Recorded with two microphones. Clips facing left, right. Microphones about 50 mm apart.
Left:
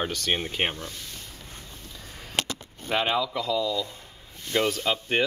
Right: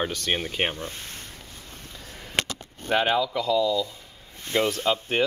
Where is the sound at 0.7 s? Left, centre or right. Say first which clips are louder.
Right 3 dB; right.